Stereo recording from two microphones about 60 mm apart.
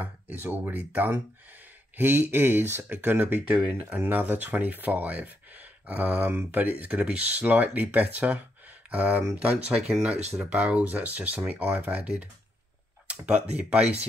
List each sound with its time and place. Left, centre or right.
0.0 s speech: right